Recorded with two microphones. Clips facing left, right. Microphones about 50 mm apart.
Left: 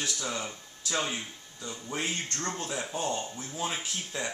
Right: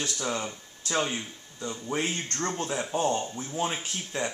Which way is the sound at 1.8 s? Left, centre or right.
Right.